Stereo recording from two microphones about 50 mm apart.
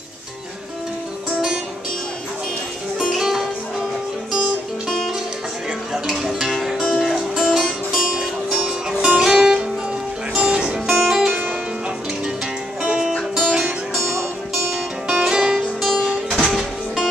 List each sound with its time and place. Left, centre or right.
3.0 s music: centre
6.0 s music: centre
6.8 s music: centre
7.1 s music: centre
8.6 s music: right
10.9 s music: centre
13.4 s music: right
15.1 s music: centre